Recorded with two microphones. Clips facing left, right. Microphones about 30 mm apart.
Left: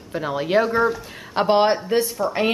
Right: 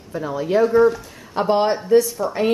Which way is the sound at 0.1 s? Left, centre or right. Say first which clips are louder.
Even; left.